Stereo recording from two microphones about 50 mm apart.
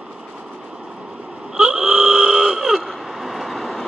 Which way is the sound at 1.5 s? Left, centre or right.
Centre.